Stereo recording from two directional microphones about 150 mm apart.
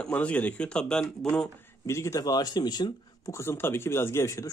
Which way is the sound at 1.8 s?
20° left (ahead or behind).